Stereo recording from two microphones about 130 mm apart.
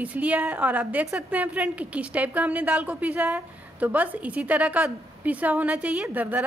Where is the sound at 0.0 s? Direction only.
10° right (ahead or behind).